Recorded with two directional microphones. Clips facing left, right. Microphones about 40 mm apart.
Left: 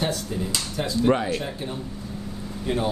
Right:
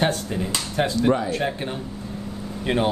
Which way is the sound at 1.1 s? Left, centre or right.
Left.